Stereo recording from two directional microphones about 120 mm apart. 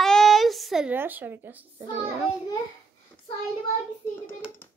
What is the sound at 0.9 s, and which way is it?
A child's voice, 15° right (ahead or behind).